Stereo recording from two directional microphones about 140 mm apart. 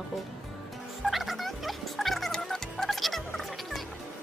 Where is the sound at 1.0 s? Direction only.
Centre (ahead or behind).